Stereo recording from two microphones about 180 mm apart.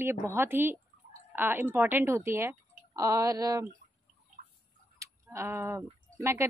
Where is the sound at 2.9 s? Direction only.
20° right (ahead or behind).